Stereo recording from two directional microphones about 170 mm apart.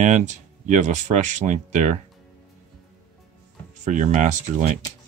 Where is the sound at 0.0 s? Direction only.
45° right (ahead or behind).